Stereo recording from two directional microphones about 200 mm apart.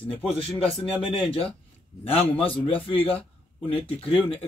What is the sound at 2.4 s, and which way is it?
Speech, 25° left (ahead or behind).